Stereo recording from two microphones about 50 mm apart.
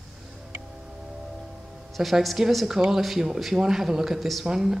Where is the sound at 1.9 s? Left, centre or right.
Centre.